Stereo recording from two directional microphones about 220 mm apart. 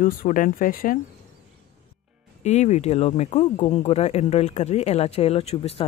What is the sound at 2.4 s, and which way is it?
Speech, 30° left (ahead or behind).